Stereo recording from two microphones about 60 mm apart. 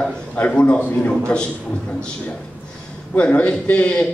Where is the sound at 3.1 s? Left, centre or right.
Left.